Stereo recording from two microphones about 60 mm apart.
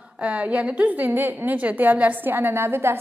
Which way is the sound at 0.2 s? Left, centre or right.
Right.